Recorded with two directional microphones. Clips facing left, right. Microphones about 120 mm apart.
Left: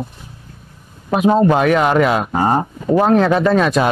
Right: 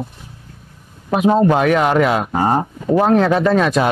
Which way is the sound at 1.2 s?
25° left (ahead or behind).